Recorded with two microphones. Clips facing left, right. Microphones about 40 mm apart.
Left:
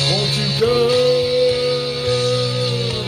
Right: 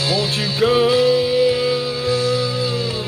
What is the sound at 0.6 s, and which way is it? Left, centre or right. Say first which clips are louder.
Music: even; right.